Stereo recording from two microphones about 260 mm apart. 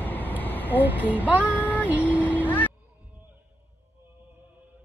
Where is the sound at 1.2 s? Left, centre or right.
Centre.